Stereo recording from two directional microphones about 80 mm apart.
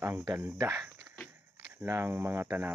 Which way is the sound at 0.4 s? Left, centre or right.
Right.